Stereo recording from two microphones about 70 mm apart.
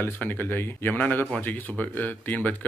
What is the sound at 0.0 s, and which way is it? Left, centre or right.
Speech, left.